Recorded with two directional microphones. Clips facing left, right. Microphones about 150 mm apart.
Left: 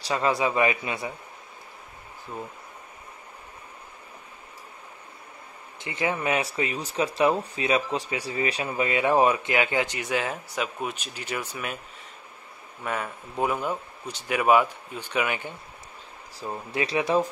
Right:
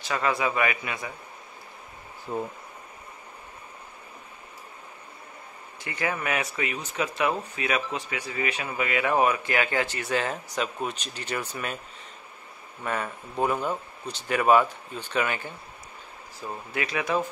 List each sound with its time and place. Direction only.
0.0 s speech: 30° left (ahead or behind)
2.3 s speech: 40° right (ahead or behind)
5.8 s speech: 20° left (ahead or behind); by 11.8 s 5° left (ahead or behind)
12.8 s speech: 5° left (ahead or behind)
16.4 s speech: 25° left (ahead or behind)